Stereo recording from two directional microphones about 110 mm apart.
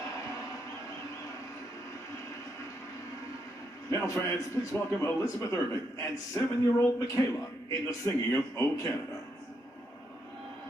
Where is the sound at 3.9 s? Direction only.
25° left (ahead or behind).